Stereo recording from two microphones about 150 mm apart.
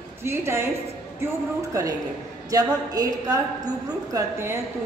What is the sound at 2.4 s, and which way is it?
A woman's voice, 25° right (ahead or behind).